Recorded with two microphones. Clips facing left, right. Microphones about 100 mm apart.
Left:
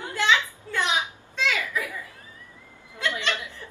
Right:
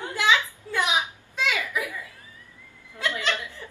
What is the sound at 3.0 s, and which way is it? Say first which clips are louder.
Laughter: even; 20° left (ahead or behind).